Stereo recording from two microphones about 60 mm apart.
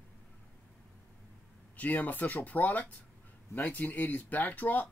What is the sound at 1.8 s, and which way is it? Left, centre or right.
Speech, left.